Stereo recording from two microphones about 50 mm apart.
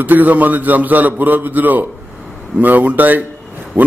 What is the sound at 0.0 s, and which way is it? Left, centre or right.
A man's voice, right.